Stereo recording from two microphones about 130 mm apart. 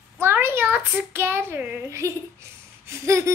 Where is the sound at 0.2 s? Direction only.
20° right (ahead or behind).